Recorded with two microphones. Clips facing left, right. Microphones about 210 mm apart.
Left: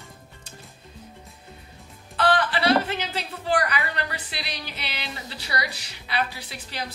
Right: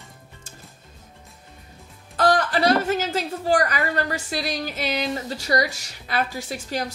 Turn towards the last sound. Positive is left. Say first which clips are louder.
# right 9 dB
turn(degrees=-45)  # may be behind; listen again after turning